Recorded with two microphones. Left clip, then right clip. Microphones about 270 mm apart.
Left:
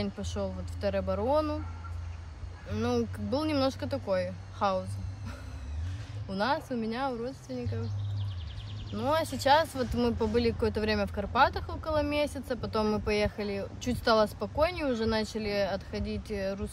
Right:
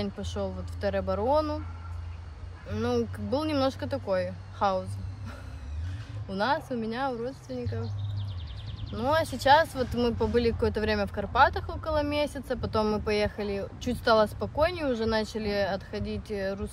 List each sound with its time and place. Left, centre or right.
0.0 s speech: centre
2.7 s speech: centre
8.9 s speech: centre